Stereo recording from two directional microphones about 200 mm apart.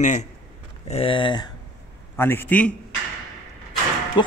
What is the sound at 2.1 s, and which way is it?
Speech, 10° left (ahead or behind).